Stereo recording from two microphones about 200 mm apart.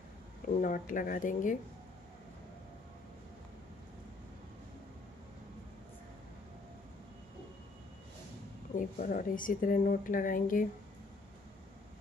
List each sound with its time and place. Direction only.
0.6 s speech: 40° left (ahead or behind)
8.7 s speech: 45° left (ahead or behind)